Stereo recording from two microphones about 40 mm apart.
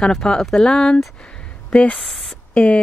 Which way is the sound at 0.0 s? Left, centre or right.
Centre.